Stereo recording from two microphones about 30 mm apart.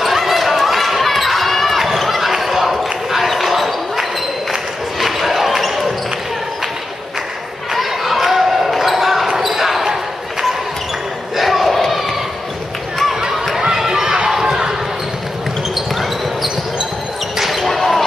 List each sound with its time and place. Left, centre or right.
0.0 s run: centre
2.0 s basketball bounce: centre
5.0 s basketball bounce: centre
7.7 s basketball bounce: centre
11.3 s battle cry: centre
13.7 s a sound: centre
14.0 s run: right
14.4 s basketball bounce: centre
17.4 s basketball bounce: centre